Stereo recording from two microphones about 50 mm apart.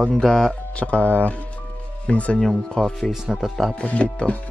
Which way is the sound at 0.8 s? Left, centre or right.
Left.